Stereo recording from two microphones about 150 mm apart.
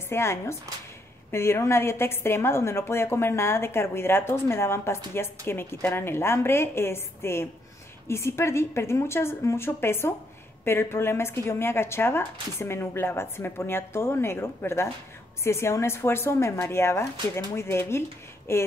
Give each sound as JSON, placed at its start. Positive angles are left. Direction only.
{"t": 0.1, "sound": "a woman's voice", "side_deg": 15}